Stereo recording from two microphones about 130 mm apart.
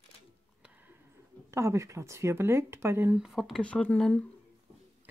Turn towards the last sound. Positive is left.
turn(degrees=5)  # may be behind; listen again after turning